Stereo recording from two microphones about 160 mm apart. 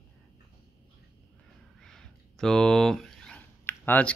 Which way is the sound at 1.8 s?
5° left (ahead or behind).